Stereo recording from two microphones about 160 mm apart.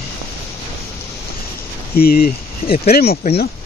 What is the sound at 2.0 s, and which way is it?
Speech, 70° left (ahead or behind).